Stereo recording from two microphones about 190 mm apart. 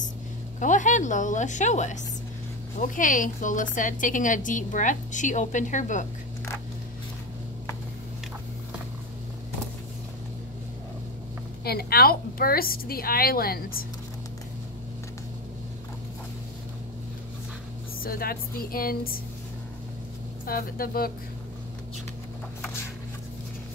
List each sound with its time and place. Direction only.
0.6 s a woman's voice: 40° left (ahead or behind)
11.6 s a woman's voice: 55° left (ahead or behind)
18.0 s a woman's voice: 50° left (ahead or behind)
20.4 s a woman's voice: 50° left (ahead or behind)